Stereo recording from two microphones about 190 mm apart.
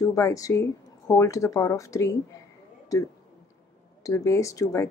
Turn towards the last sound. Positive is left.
turn(degrees=15)  # may be behind; listen again after turning